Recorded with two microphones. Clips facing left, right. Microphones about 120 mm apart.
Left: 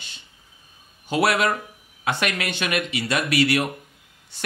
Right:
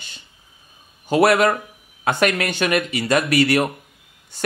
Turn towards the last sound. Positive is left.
turn(degrees=-45)  # may be behind; listen again after turning